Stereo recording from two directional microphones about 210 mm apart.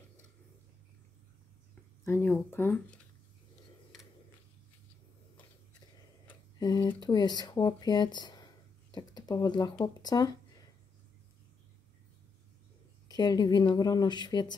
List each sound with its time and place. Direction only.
2.0 s speech: 10° left (ahead or behind)
3.9 s a sound: centre (ahead or behind)
6.6 s speech: 20° left (ahead or behind)
13.1 s speech: 20° left (ahead or behind)